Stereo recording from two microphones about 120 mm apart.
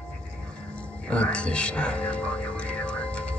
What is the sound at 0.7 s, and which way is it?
Music, 10° left (ahead or behind).